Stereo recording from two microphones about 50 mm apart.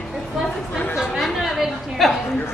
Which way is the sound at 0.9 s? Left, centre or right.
Centre.